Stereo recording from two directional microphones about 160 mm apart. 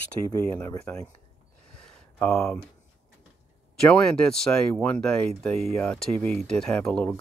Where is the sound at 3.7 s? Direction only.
5° left (ahead or behind).